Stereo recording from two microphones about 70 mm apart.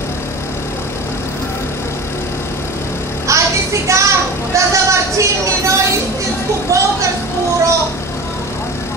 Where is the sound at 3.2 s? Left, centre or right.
Right.